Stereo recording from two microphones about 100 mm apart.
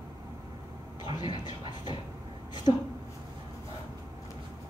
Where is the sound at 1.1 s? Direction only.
50° left (ahead or behind).